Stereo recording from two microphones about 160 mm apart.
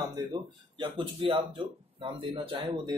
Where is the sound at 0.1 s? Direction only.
30° right (ahead or behind).